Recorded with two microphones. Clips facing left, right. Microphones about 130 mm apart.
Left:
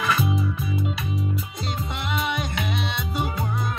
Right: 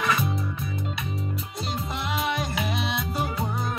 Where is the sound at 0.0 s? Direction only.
Centre (ahead or behind).